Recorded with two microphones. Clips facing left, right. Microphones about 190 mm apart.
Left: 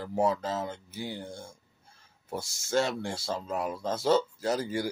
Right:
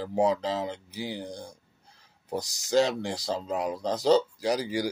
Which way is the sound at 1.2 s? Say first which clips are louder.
Right 3 dB; 35° right (ahead or behind).